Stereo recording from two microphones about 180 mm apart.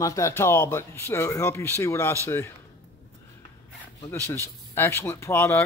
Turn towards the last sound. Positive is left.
turn(degrees=15)  # may be behind; listen again after turning